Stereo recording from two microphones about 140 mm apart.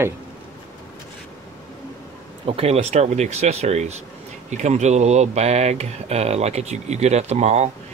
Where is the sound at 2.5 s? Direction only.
45° right (ahead or behind).